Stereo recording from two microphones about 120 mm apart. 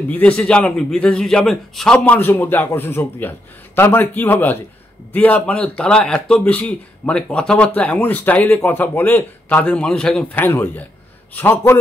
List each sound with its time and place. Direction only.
0.1 s speech: 10° left (ahead or behind)
2.0 s a man's voice: 15° left (ahead or behind)